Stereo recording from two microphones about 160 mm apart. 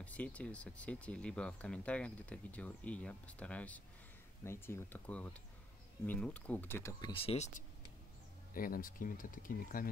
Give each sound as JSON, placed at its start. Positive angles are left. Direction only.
{"t": 0.0, "sound": "speech", "side_deg": 10}
{"t": 7.1, "sound": "speech", "side_deg": 35}
{"t": 8.5, "sound": "speech", "side_deg": 60}